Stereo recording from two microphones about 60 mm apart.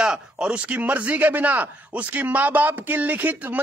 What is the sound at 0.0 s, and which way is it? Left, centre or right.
Speech, centre.